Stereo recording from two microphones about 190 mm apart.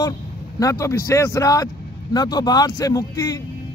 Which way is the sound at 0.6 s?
15° left (ahead or behind).